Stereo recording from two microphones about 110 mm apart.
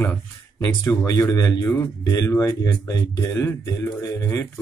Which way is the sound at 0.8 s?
30° left (ahead or behind).